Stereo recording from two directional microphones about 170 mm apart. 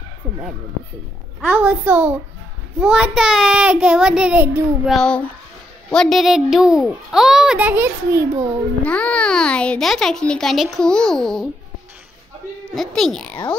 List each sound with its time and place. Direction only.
1.4 s a woman's voice: 10° right (ahead or behind)
8.8 s a child's voice: 5° left (ahead or behind)
12.7 s a child's voice: centre (ahead or behind)